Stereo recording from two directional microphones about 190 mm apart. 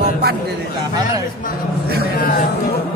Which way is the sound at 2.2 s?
50° left (ahead or behind).